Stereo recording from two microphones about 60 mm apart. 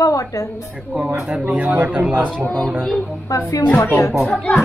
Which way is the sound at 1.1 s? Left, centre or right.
Centre.